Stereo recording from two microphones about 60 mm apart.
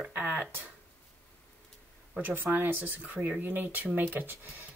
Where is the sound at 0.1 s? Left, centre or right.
Right.